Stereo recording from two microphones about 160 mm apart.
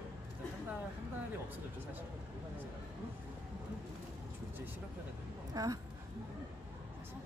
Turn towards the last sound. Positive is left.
turn(degrees=-20)  # may be behind; listen again after turning